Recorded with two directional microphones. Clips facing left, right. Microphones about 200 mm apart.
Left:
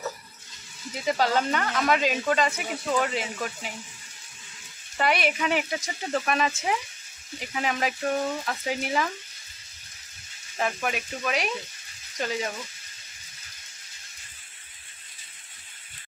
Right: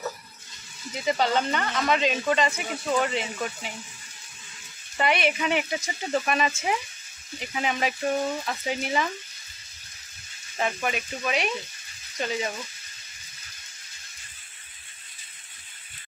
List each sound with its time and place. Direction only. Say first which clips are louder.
1.0 s speech: even; 5° left (ahead or behind)
4.9 s speech: right 1 dB; centre (ahead or behind)
10.6 s speech: right 1 dB; centre (ahead or behind)